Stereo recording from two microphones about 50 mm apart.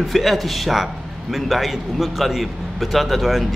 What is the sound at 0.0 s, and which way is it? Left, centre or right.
A man's voice, centre.